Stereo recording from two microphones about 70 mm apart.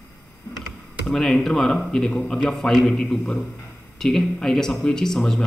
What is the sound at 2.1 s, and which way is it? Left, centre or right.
Speech, centre.